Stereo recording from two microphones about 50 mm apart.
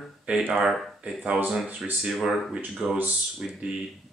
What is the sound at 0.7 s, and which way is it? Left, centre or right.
Speech, centre.